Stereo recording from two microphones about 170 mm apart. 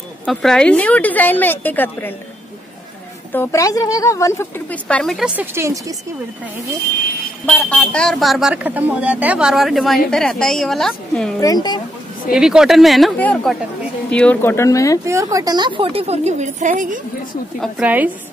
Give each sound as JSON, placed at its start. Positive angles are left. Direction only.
{"t": 0.2, "sound": "speech", "side_deg": 5}
{"t": 3.3, "sound": "speech", "side_deg": 20}
{"t": 7.5, "sound": "speech", "side_deg": 10}
{"t": 11.4, "sound": "speech", "side_deg": 25}
{"t": 12.3, "sound": "speech", "side_deg": -5}
{"t": 15.3, "sound": "speech", "side_deg": -25}
{"t": 17.6, "sound": "a woman's voice", "side_deg": -5}